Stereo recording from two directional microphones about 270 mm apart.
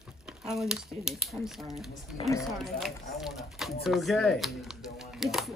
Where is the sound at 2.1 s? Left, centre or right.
Centre.